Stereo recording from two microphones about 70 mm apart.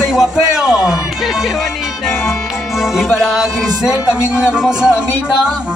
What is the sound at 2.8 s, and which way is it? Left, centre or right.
Music, centre.